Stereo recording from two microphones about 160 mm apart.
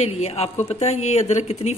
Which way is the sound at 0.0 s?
40° left (ahead or behind).